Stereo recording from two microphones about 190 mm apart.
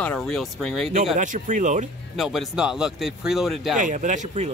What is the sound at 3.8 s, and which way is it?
Speech, 40° right (ahead or behind).